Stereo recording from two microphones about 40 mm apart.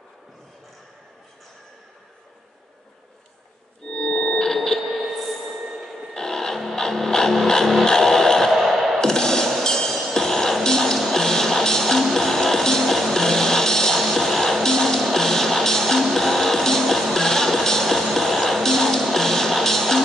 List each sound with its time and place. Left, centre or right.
3.8 s organ: centre
4.8 s a sound: centre
6.1 s music: centre
8.5 s music: centre
9.0 s music: centre